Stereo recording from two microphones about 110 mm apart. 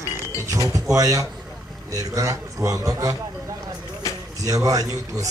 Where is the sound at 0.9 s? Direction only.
30° right (ahead or behind).